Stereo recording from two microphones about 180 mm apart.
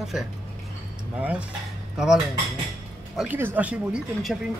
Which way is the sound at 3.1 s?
5° right (ahead or behind).